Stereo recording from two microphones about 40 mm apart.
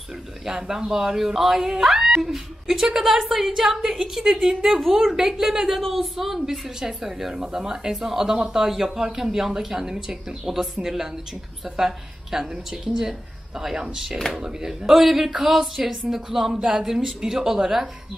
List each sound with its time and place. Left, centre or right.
0.5 s speech: centre
3.8 s speech: centre
14.3 s speech: centre